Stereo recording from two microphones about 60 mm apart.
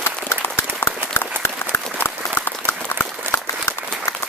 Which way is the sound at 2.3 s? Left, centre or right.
Left.